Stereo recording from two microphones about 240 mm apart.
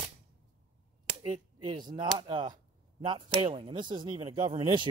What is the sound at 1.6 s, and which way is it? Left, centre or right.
Speech, centre.